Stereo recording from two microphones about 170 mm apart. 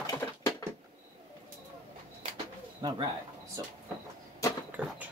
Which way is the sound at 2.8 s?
25° right (ahead or behind).